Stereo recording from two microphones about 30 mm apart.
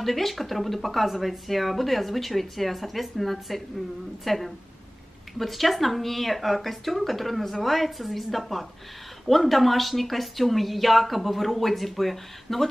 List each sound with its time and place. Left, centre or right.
0.0 s speech: centre